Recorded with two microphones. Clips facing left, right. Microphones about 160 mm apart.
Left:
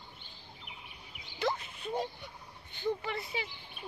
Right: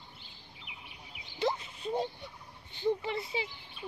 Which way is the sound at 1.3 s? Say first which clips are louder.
Right 2 dB; 25° right (ahead or behind).